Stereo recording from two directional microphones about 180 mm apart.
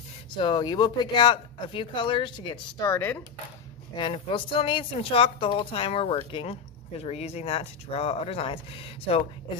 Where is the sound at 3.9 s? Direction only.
30° left (ahead or behind).